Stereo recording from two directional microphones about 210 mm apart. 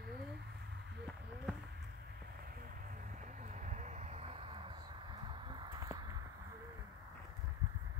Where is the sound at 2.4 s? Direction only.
40° right (ahead or behind); by 6.0 s 15° right (ahead or behind).